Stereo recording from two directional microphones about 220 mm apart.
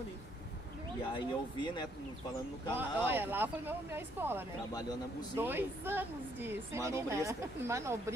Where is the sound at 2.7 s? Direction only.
10° right (ahead or behind).